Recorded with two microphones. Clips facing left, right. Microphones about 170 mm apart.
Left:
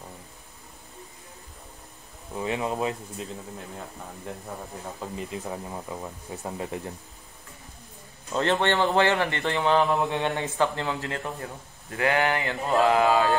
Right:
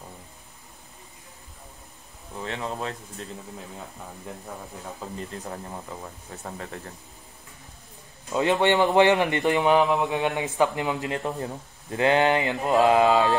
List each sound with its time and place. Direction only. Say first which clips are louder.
2.3 s speech: left 4 dB; 15° left (ahead or behind)
5.0 s speech: left 2 dB; 5° left (ahead or behind)
8.4 s speech: right 3 dB; 15° right (ahead or behind)
10.3 s speech: right 2 dB; 15° right (ahead or behind)